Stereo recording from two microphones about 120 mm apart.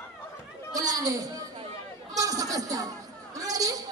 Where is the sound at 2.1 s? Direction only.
30° right (ahead or behind).